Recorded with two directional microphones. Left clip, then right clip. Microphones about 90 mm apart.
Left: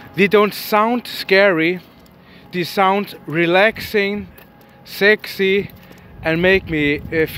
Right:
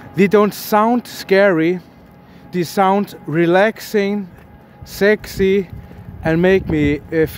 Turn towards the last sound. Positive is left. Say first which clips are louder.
# right 1 dB
turn(degrees=-45)  # may be behind; listen again after turning